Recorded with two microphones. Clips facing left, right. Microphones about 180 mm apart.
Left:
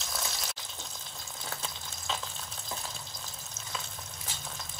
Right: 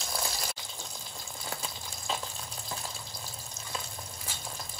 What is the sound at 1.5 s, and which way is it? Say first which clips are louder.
Frying: right 2 dB; centre (ahead or behind).